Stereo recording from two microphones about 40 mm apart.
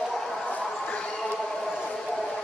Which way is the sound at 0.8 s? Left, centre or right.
Left.